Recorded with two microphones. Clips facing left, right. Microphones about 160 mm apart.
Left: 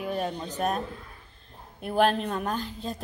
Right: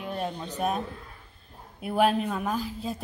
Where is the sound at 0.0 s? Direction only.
5° left (ahead or behind).